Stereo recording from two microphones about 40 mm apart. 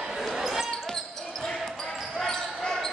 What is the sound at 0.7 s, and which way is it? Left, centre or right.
Basketball bounce, centre.